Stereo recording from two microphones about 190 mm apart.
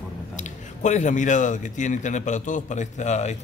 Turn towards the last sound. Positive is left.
turn(degrees=35)  # may be behind; listen again after turning